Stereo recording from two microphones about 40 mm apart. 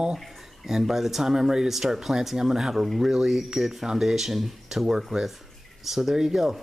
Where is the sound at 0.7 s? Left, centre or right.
Centre.